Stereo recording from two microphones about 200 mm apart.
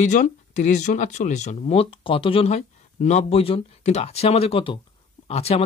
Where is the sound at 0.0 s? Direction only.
35° left (ahead or behind).